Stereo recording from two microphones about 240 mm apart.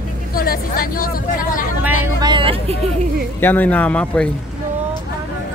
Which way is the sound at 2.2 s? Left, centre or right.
Right.